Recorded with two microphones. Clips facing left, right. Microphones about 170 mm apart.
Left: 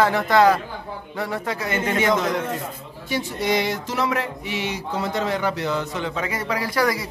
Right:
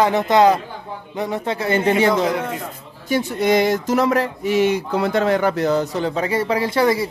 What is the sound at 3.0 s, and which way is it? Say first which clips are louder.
Speech: right 6 dB; 50° right (ahead or behind).